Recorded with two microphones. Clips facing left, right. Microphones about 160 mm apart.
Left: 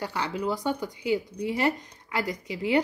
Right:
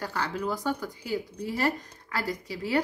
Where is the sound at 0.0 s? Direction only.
15° left (ahead or behind).